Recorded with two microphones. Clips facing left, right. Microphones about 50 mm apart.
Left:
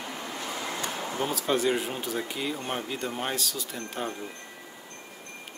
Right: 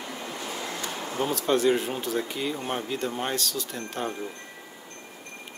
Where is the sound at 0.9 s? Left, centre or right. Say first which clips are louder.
Right 4 dB; centre.